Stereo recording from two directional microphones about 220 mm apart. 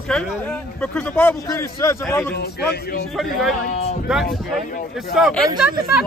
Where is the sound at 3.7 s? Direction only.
30° left (ahead or behind).